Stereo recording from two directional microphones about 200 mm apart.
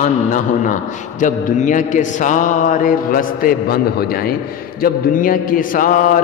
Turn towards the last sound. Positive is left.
turn(degrees=40)  # may be behind; listen again after turning